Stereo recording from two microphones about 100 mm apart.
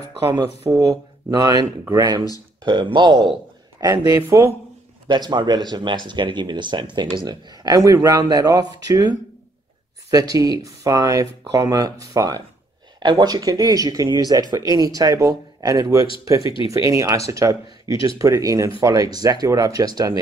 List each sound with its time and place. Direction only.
0.7 s speech: 35° right (ahead or behind)
2.6 s speech: 50° right (ahead or behind)
3.8 s speech: 35° right (ahead or behind)
5.0 s speech: 45° right (ahead or behind)
10.1 s speech: 40° right (ahead or behind)
16.4 s speech: 65° left (ahead or behind)
16.8 s speech: 35° right (ahead or behind)